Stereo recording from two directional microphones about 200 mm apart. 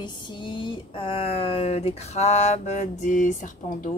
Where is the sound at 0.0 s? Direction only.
20° left (ahead or behind).